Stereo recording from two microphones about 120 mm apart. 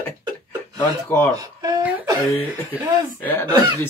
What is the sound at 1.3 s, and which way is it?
Speech, 30° right (ahead or behind).